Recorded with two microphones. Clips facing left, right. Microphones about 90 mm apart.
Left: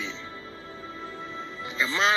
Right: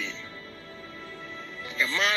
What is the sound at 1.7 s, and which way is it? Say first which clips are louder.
Speech: left 2 dB; 25° left (ahead or behind).